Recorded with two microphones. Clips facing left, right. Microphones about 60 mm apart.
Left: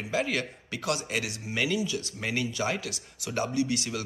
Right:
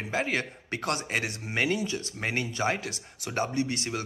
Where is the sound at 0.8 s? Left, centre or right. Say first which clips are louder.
Even; right.